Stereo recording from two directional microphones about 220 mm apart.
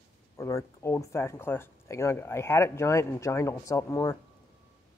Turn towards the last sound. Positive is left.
turn(degrees=15)  # may be behind; listen again after turning